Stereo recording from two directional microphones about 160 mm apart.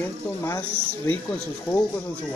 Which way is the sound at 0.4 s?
15° left (ahead or behind).